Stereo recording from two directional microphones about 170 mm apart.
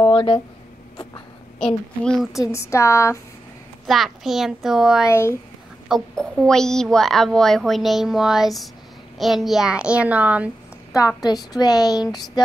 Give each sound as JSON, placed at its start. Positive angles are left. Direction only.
{"t": 0.0, "sound": "a sound", "side_deg": 30}
{"t": 2.0, "sound": "speech", "side_deg": 0}
{"t": 2.5, "sound": "speech", "side_deg": 15}
{"t": 3.8, "sound": "speech", "side_deg": 0}
{"t": 5.0, "sound": "speech", "side_deg": 15}
{"t": 5.9, "sound": "a child's voice", "side_deg": 0}
{"t": 11.5, "sound": "speech", "side_deg": 20}